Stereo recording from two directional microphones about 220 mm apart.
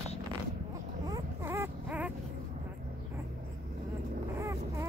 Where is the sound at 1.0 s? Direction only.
15° right (ahead or behind).